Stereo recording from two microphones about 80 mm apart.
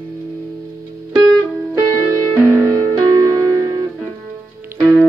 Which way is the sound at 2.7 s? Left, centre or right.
Right.